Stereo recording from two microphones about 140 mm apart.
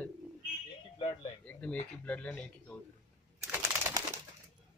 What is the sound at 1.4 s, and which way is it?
A man's voice, 10° left (ahead or behind).